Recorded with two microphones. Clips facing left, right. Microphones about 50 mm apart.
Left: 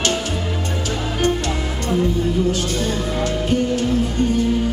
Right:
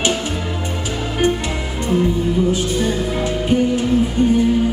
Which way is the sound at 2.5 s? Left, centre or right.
Centre.